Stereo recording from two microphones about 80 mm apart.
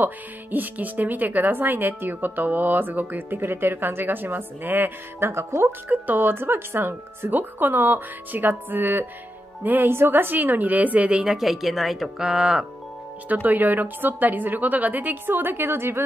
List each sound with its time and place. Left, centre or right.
0.0 s speech: right
5.9 s speech: right
11.3 s speech: centre
13.3 s speech: right